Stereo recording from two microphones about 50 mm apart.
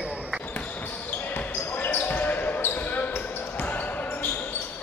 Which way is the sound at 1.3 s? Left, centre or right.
Left.